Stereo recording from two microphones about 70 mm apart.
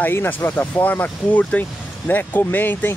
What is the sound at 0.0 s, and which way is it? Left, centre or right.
Speech, left.